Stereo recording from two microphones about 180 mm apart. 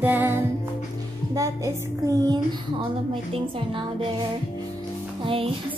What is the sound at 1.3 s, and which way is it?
A child's voice, 15° right (ahead or behind).